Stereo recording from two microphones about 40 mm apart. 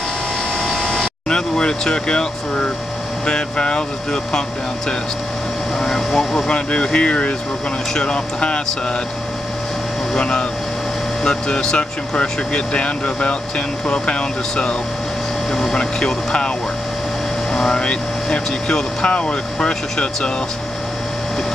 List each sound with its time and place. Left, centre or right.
1.3 s vehicle: centre
3.3 s speech: left
5.8 s speech: centre
6.5 s speech: left
10.1 s speech: left
17.7 s speech: left